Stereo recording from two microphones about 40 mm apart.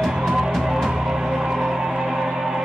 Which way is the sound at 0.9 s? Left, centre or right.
Centre.